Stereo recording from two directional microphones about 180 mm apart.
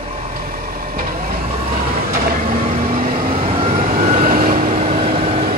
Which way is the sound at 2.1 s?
40° right (ahead or behind).